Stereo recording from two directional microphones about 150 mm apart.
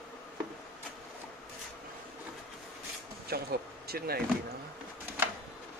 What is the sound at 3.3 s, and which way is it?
Speech, 90° right.